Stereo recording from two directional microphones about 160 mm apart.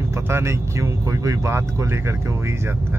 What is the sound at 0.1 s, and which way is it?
Speech, 15° right (ahead or behind).